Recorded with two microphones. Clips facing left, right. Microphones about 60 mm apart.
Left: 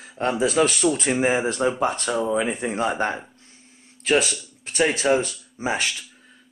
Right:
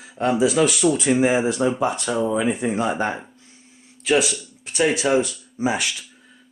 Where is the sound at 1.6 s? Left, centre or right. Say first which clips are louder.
Right 1 dB; left.